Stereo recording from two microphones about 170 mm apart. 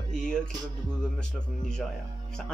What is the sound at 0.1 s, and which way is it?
Speech, 5° left (ahead or behind).